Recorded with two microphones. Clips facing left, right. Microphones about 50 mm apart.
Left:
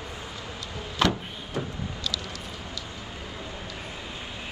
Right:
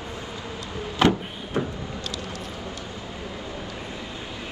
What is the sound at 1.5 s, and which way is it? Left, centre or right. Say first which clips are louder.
Vehicle: right 5 dB; right.